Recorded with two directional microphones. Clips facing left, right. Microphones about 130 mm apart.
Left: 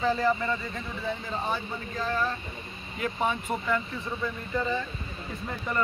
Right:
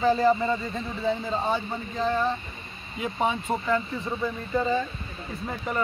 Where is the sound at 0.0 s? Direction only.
20° right (ahead or behind).